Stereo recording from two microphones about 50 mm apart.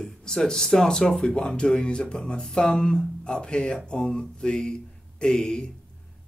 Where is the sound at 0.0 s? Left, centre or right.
Centre.